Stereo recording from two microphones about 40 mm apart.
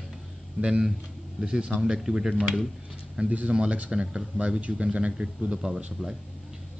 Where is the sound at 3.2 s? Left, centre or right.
Right.